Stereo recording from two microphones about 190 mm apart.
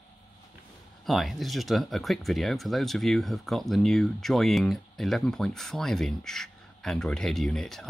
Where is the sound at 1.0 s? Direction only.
Centre (ahead or behind).